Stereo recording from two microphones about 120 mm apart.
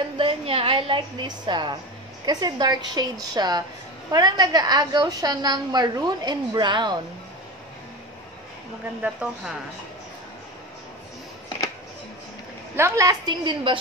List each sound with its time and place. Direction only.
0.2 s a woman's voice: 50° right (ahead or behind)
9.0 s speech: 10° right (ahead or behind)
12.7 s a woman's voice: 25° right (ahead or behind); by 13.7 s 40° right (ahead or behind)